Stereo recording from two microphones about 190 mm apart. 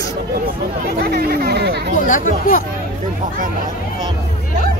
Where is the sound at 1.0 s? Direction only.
50° right (ahead or behind).